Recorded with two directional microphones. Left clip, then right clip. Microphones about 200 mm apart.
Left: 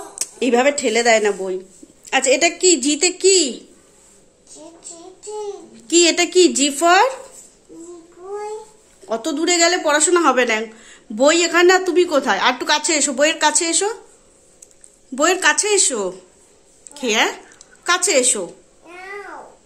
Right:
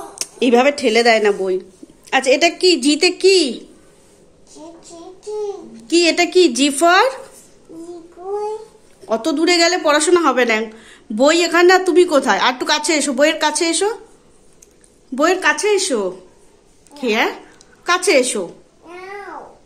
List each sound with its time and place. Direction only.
0.2 s a woman's voice: 5° left (ahead or behind)
5.9 s a woman's voice: 15° left (ahead or behind)
9.0 s speech: 5° left (ahead or behind)
15.1 s a woman's voice: 15° left (ahead or behind)